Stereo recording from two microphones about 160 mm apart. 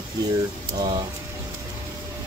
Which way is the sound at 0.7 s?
25° right (ahead or behind).